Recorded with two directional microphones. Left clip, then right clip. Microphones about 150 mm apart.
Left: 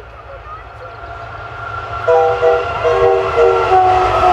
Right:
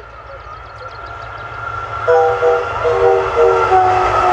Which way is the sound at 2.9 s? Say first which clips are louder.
Even; 20° left (ahead or behind).